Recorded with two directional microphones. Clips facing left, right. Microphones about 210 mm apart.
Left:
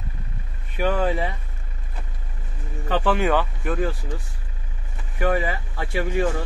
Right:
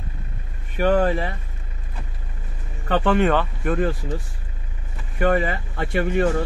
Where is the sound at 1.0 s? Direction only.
15° left (ahead or behind).